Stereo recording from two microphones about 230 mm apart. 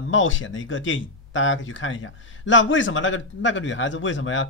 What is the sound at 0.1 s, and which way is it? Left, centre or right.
Speech, left.